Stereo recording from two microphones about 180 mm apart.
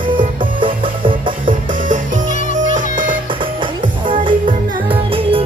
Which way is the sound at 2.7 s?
50° right (ahead or behind).